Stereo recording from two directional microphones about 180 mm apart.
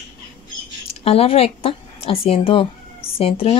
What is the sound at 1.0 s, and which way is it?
A woman's voice, 35° left (ahead or behind).